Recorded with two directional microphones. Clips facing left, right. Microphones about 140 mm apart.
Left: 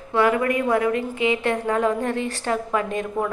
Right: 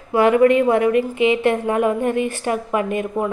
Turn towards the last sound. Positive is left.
turn(degrees=-15)  # may be behind; listen again after turning